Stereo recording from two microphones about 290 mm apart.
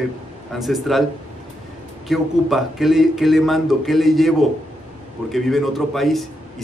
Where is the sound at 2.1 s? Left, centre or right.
Centre.